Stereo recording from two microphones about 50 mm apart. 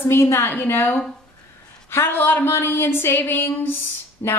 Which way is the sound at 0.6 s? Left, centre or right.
Left.